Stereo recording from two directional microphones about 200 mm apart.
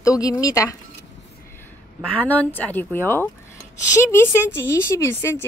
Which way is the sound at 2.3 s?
10° left (ahead or behind).